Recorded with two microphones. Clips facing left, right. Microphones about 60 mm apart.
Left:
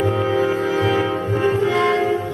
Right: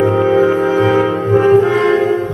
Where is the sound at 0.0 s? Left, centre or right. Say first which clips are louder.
Right 7 dB; right.